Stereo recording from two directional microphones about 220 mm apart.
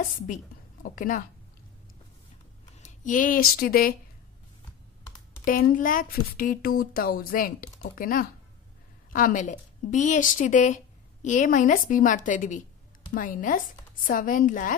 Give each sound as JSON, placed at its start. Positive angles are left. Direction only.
{"t": 0.8, "sound": "speech", "side_deg": 35}
{"t": 2.8, "sound": "speech", "side_deg": 35}
{"t": 5.0, "sound": "computer keyboard", "side_deg": 10}
{"t": 5.4, "sound": "speech", "side_deg": 40}